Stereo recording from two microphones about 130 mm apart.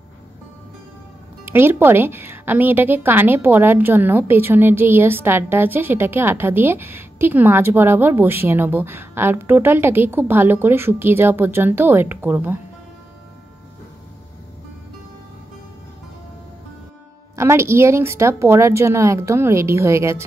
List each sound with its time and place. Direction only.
1.4 s a woman's voice: 15° right (ahead or behind)
17.4 s speech: 20° right (ahead or behind)